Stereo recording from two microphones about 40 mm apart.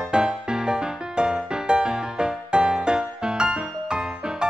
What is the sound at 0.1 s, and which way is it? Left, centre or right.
Music, right.